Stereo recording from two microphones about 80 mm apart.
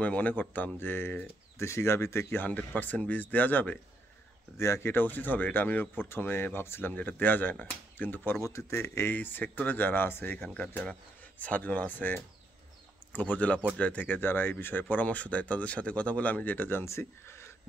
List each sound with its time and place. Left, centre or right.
0.0 s speech: centre; by 2.4 s left
2.4 s speech: left
4.6 s speech: left
8.3 s speech: left
9.1 s speech: left
10.5 s speech: centre; by 17.5 s left